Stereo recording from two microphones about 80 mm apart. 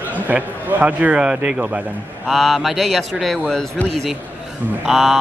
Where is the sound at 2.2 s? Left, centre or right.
Centre.